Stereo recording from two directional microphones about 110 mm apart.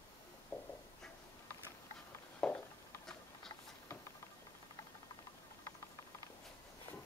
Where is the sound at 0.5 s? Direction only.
15° left (ahead or behind).